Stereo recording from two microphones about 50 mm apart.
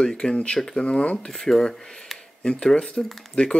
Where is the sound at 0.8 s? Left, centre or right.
Left.